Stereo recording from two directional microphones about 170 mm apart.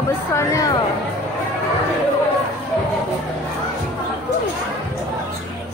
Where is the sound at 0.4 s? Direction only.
15° left (ahead or behind).